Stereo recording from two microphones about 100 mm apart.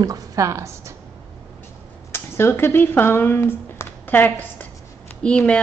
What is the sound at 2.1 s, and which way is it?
A woman's voice, 25° left (ahead or behind).